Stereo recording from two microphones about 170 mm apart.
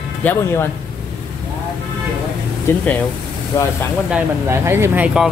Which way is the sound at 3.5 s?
15° left (ahead or behind).